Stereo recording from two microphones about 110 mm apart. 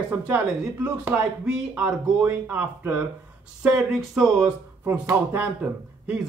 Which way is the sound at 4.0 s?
Centre (ahead or behind).